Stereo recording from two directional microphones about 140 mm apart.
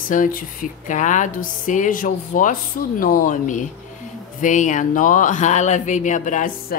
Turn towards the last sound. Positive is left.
turn(degrees=65)  # may be behind; listen again after turning